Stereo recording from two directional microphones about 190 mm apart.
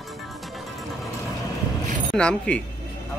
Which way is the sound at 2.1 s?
5° left (ahead or behind).